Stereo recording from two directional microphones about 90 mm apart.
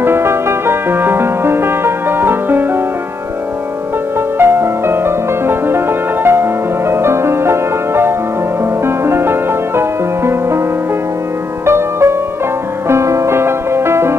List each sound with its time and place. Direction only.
0.0 s music: 25° right (ahead or behind)
4.4 s music: 25° right (ahead or behind)
11.6 s music: 30° right (ahead or behind)